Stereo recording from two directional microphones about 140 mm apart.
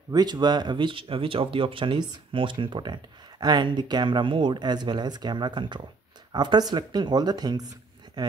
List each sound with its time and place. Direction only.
0.1 s speech: 30° right (ahead or behind)